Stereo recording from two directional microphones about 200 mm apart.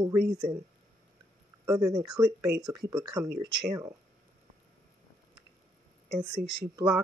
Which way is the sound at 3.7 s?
15° right (ahead or behind).